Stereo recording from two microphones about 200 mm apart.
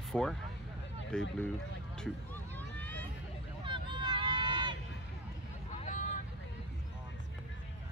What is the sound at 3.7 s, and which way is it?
Vehicle, 25° right (ahead or behind).